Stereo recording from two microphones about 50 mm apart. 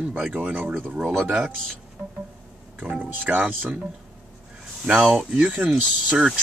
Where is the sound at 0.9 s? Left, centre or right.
Centre.